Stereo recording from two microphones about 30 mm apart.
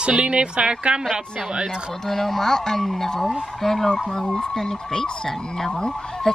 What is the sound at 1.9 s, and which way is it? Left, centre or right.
Speech, centre.